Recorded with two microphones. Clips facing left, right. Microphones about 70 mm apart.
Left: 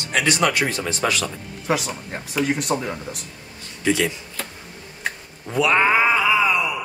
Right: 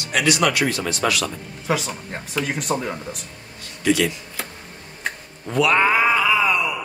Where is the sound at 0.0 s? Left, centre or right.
Left.